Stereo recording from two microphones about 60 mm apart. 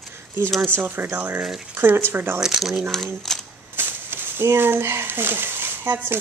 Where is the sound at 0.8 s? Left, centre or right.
Right.